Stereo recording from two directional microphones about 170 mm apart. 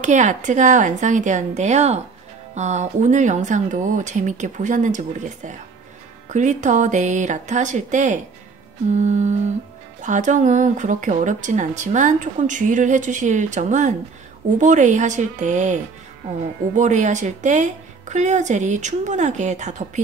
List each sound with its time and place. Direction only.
0.0 s speech: 45° right (ahead or behind)